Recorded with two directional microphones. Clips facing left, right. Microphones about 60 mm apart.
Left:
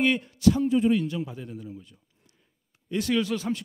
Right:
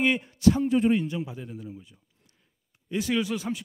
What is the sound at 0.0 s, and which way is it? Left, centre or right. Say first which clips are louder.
A man's voice: even; centre.